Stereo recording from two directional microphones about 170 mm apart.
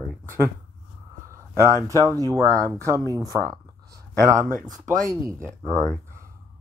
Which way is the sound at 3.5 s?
20° right (ahead or behind).